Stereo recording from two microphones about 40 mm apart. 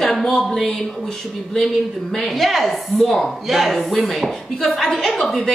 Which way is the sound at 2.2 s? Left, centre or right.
Centre.